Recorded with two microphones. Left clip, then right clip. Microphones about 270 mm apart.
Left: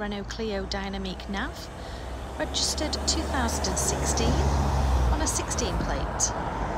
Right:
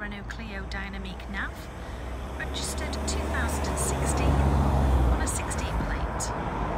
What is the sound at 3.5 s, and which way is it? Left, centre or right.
Speech, left.